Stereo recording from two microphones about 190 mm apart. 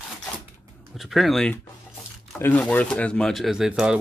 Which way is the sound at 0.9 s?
Centre (ahead or behind).